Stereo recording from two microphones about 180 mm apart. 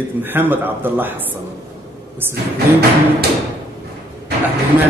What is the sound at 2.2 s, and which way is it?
Speech, 10° right (ahead or behind).